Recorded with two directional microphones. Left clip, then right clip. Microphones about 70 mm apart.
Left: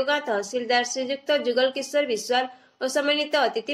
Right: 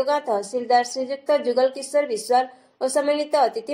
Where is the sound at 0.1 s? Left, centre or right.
Centre.